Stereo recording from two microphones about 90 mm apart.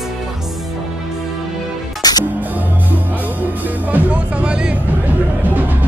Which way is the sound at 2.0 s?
45° left (ahead or behind).